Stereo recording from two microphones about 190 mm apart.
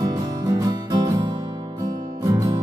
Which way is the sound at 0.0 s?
20° right (ahead or behind).